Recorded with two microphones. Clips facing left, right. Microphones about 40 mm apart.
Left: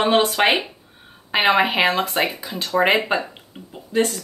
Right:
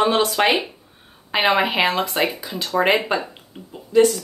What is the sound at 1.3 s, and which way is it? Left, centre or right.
A woman's voice, centre.